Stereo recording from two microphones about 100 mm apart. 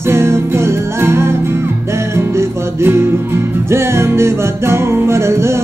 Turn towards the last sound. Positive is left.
turn(degrees=-25)  # may be behind; listen again after turning